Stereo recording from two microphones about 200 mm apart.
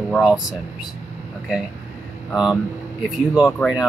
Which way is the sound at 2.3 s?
Centre (ahead or behind).